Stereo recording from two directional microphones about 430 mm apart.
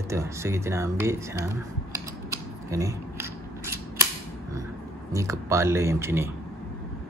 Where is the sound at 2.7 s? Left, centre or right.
Centre.